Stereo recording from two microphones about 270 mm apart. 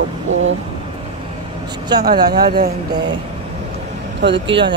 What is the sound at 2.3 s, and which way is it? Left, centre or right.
Speech, right.